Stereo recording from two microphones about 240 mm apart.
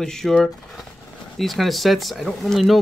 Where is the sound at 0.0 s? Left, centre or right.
Centre.